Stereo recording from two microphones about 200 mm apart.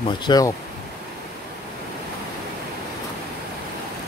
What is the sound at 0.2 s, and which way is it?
Speech, 20° left (ahead or behind).